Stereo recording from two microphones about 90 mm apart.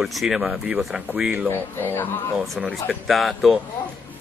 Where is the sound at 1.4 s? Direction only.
20° left (ahead or behind).